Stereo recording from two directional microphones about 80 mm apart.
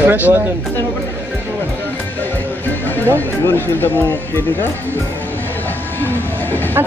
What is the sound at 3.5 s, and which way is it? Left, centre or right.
Speech, left.